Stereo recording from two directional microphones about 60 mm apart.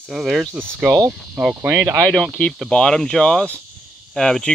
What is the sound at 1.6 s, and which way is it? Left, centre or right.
Speech, right.